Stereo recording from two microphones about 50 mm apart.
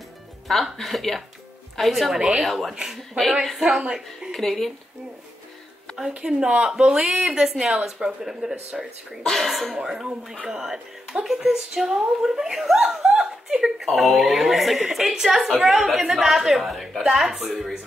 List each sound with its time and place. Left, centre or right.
0.5 s a woman's voice: centre
2.7 s speech: centre
3.0 s a woman's voice: centre
3.7 s speech: centre
4.3 s speech: centre
6.1 s speech: centre
9.2 s a woman's voice: centre
9.8 s a woman's voice: centre